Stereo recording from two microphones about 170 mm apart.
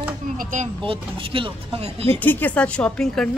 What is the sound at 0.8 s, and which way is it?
Speech, 30° right (ahead or behind).